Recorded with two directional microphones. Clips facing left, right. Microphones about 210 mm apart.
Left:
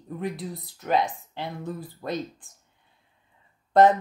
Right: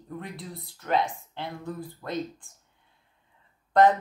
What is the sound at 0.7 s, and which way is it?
Speech, 15° left (ahead or behind).